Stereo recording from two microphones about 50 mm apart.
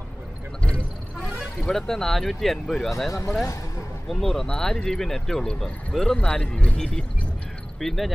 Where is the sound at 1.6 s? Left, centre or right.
Centre.